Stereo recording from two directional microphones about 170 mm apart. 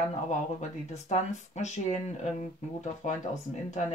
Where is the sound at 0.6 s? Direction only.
40° left (ahead or behind).